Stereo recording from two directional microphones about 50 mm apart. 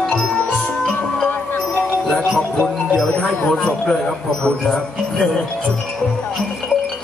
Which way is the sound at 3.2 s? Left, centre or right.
Centre.